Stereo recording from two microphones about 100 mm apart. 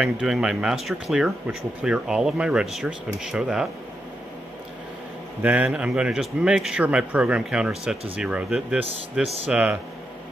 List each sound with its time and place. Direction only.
0.0 s speech: 5° right (ahead or behind)
5.4 s speech: 15° right (ahead or behind)